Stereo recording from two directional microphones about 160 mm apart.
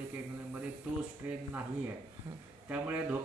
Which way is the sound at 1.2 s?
15° right (ahead or behind).